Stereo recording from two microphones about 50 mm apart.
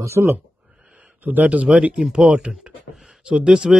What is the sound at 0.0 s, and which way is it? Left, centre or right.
Speech, right.